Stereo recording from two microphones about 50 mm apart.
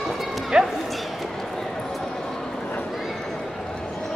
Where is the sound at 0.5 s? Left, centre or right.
Centre.